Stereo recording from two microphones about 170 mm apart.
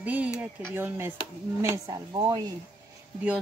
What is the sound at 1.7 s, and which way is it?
Speech, 20° right (ahead or behind).